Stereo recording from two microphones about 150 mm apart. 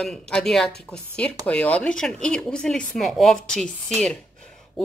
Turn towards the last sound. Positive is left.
turn(degrees=5)  # may be behind; listen again after turning